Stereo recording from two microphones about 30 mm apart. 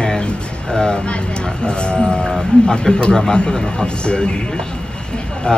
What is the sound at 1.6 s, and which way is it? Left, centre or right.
Speech, left.